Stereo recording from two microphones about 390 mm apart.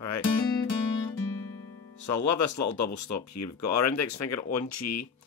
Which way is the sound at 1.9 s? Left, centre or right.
Left.